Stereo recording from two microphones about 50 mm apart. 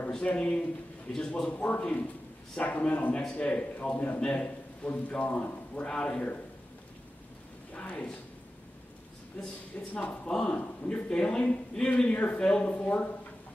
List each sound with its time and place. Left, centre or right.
0.2 s a man's voice: left
7.8 s a man's voice: left
9.4 s a man's voice: left
12.6 s a man's voice: left